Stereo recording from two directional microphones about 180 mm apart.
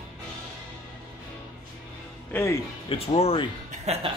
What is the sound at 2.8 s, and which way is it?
Speech, 35° left (ahead or behind).